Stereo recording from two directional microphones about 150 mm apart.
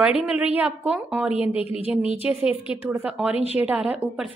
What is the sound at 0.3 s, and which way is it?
A woman's voice, 10° right (ahead or behind).